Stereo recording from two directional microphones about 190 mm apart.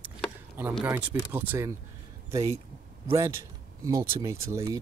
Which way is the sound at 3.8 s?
20° right (ahead or behind).